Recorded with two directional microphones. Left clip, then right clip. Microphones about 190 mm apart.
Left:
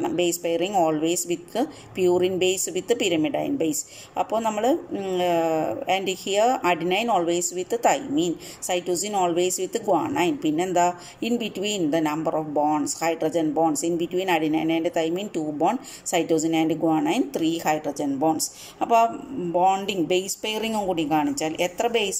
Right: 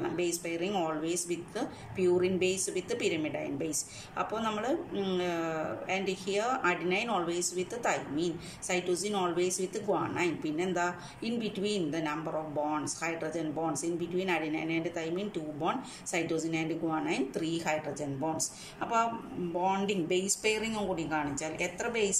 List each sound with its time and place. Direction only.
0.1 s a woman's voice: 45° left (ahead or behind)